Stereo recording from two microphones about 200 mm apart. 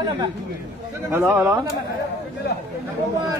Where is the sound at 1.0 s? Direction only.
10° right (ahead or behind).